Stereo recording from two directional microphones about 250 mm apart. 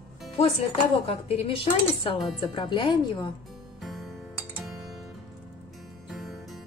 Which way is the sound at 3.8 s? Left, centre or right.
Centre.